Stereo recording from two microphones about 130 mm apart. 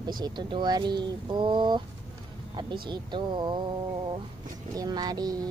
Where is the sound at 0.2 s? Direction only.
35° right (ahead or behind).